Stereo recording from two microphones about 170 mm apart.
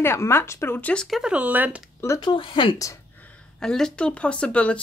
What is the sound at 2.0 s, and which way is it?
Speech, 20° left (ahead or behind).